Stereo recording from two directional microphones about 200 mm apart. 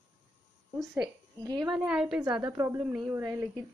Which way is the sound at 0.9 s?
20° right (ahead or behind).